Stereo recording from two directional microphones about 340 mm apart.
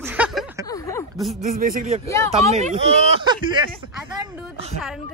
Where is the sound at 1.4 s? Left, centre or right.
Right.